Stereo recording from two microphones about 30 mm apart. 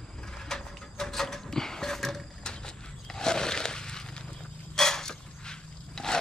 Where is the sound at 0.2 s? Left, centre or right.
Left.